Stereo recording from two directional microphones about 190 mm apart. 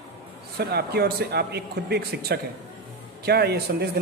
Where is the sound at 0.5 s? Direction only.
55° right (ahead or behind).